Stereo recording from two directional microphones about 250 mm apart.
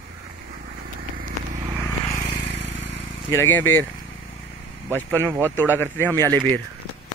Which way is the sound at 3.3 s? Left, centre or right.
Centre.